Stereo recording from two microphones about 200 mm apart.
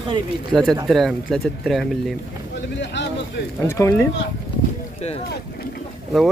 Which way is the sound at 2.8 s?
60° left (ahead or behind).